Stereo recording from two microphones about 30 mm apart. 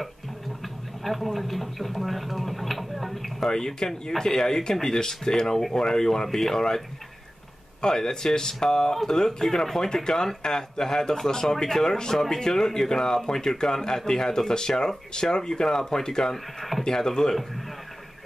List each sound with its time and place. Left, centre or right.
1.0 s speech: centre
3.4 s speech: centre
7.8 s speech: left